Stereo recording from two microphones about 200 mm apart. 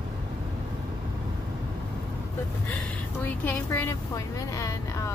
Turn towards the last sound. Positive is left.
turn(degrees=15)  # may be behind; listen again after turning